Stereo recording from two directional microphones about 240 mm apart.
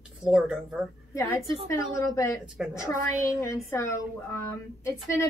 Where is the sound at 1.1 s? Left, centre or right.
Centre.